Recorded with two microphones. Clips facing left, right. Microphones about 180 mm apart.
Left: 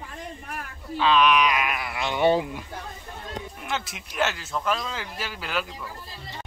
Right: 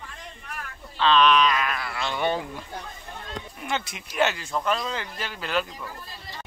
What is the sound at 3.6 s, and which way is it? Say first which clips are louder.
Speech: right 3 dB; centre (ahead or behind).